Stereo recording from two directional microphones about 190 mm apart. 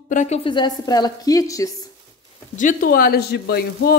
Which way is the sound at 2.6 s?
45° left (ahead or behind).